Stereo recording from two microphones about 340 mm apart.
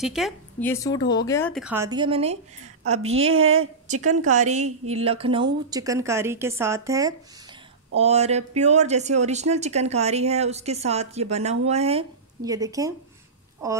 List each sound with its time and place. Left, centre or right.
0.0 s speech: centre
2.8 s a woman's voice: right
4.2 s speech: right